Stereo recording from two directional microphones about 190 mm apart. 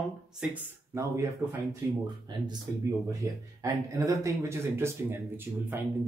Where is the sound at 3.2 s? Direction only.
15° right (ahead or behind).